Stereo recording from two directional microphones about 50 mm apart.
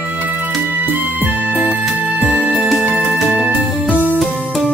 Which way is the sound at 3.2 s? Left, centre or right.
Centre.